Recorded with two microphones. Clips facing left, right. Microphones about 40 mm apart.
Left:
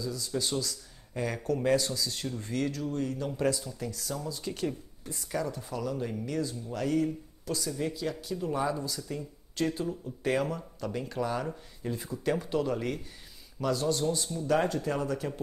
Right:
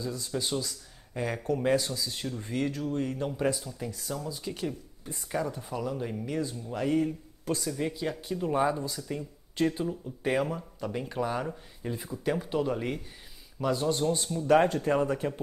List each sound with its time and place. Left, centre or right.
0.0 s speech: right
0.3 s speech: centre
4.1 s speech: centre
5.3 s speech: centre
7.4 s speech: right
7.7 s speech: right